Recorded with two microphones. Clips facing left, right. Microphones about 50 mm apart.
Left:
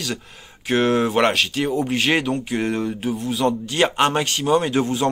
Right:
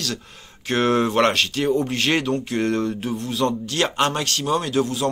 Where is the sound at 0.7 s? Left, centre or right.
Centre.